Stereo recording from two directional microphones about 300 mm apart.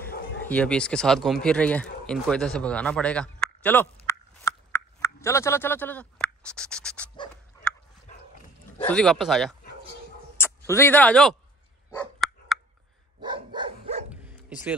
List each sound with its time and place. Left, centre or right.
0.5 s speech: centre
8.8 s speech: centre
10.7 s speech: centre
12.2 s dog: centre
13.2 s dog: centre
14.1 s bow-wow: centre